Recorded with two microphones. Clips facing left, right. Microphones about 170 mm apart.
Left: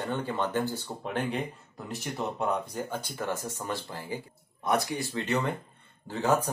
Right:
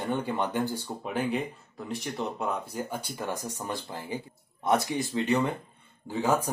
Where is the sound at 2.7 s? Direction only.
10° right (ahead or behind).